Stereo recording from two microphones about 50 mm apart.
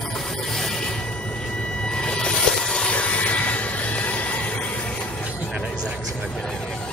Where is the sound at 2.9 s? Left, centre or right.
Left.